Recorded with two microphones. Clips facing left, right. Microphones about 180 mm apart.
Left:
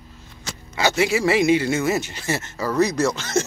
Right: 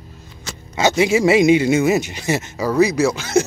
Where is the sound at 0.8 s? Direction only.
20° right (ahead or behind).